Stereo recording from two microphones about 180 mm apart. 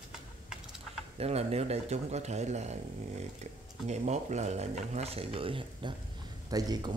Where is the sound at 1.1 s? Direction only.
35° right (ahead or behind).